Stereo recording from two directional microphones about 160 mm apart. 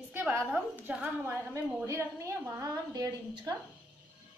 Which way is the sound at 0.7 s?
10° right (ahead or behind).